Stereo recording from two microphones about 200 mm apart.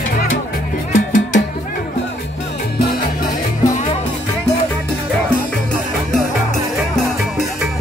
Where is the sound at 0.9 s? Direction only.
40° left (ahead or behind).